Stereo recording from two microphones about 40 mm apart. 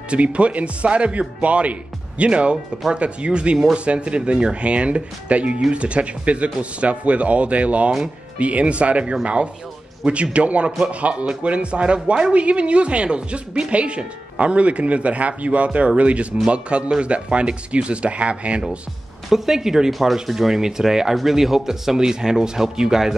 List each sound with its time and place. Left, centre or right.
0.1 s speech: right
19.2 s speech: centre
19.9 s speech: centre